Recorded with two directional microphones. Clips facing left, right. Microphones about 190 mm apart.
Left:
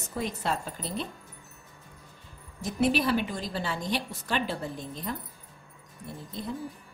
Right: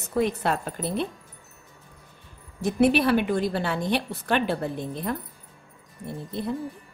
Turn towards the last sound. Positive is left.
turn(degrees=-65)  # may be behind; listen again after turning